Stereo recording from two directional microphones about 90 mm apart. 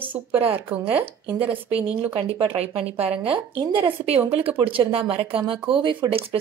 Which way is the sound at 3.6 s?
75° right (ahead or behind).